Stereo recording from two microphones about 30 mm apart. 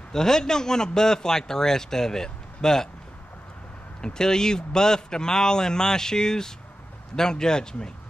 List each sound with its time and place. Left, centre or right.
0.1 s a man's voice: centre
4.0 s a man's voice: left